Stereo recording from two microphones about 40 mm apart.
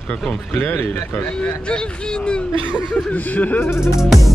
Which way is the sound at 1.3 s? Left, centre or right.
Left.